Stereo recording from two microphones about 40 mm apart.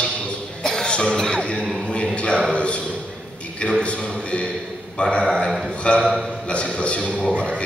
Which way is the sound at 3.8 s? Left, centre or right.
Left.